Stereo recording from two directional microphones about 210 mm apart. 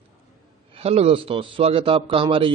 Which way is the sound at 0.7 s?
30° right (ahead or behind).